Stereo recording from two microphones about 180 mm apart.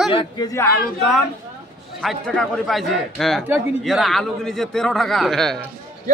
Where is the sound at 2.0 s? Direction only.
5° left (ahead or behind).